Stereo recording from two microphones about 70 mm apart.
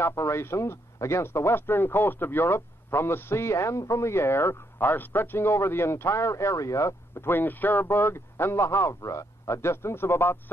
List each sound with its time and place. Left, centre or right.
0.0 s speech: left
7.2 s speech: left